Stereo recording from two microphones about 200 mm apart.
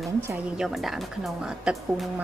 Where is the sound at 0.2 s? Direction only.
5° right (ahead or behind).